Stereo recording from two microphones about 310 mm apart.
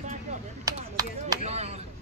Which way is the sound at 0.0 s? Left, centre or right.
Right.